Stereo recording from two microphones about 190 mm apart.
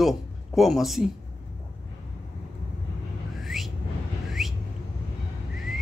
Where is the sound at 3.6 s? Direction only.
Centre (ahead or behind).